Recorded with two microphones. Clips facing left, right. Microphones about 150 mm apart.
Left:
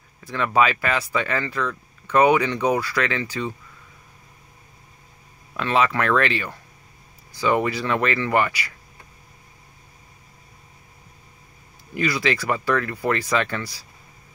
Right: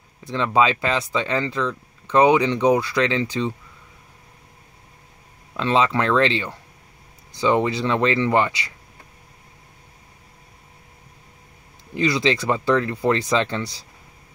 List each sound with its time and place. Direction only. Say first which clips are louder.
0.2 s speech: right 1 dB; 20° right (ahead or behind)
5.6 s speech: right 1 dB; 20° right (ahead or behind)
11.9 s speech: right 3 dB; 20° right (ahead or behind)